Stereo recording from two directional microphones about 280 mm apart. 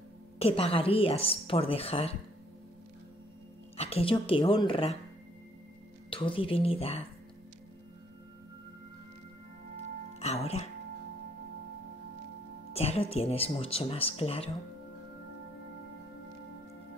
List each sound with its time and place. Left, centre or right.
0.4 s speech: left
3.7 s speech: left
6.0 s speech: centre
10.1 s speech: left
12.7 s speech: left